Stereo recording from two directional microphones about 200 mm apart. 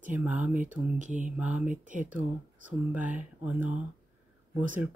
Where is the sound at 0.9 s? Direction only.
40° right (ahead or behind).